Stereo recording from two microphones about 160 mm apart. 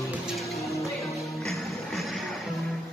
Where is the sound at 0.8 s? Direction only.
Centre (ahead or behind).